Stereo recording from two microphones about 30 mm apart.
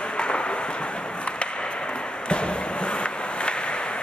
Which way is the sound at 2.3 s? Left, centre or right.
Left.